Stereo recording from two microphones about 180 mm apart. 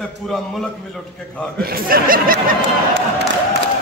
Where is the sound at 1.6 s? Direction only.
55° right (ahead or behind).